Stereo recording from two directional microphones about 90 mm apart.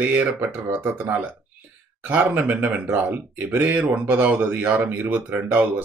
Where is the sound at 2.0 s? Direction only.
20° right (ahead or behind).